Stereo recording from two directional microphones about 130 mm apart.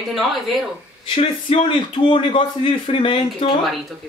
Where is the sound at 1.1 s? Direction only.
50° left (ahead or behind).